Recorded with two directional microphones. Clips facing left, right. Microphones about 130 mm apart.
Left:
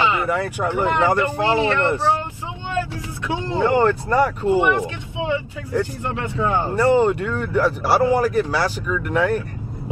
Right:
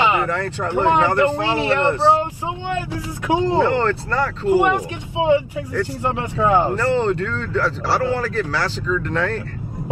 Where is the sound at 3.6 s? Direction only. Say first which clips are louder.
Left 1 dB; 15° left (ahead or behind).